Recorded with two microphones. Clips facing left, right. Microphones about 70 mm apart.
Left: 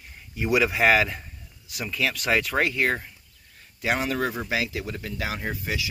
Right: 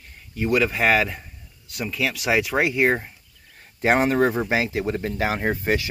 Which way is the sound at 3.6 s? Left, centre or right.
Right.